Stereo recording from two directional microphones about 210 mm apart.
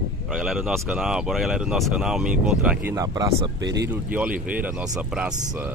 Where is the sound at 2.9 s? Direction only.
15° right (ahead or behind).